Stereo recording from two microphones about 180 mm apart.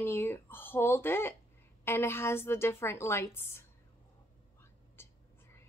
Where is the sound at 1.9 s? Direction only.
15° left (ahead or behind).